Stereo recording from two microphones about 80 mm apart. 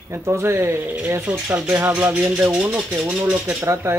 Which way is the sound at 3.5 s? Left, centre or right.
Right.